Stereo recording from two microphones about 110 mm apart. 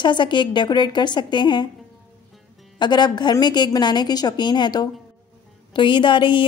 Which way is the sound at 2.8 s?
40° left (ahead or behind).